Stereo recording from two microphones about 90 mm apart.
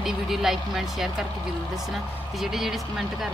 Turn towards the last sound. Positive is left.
turn(degrees=0)  # may be behind; listen again after turning